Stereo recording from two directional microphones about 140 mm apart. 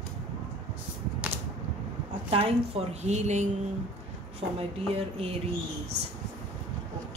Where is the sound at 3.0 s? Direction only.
55° right (ahead or behind).